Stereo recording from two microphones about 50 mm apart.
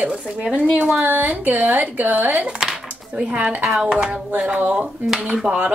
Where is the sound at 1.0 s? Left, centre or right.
Right.